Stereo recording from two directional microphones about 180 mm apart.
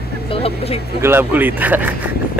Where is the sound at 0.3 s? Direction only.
35° left (ahead or behind).